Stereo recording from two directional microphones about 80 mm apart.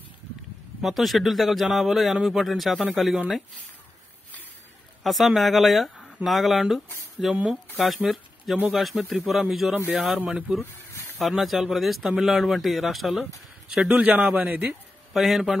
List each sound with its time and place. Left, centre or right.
0.8 s a man's voice: centre
5.0 s a man's voice: centre
10.1 s a man's voice: centre
11.1 s a man's voice: centre
15.1 s a man's voice: centre